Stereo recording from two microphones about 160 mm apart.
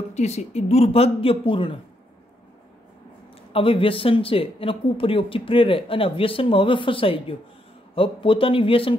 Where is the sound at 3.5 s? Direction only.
35° left (ahead or behind).